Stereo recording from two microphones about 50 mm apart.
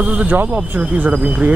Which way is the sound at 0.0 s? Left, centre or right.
Right.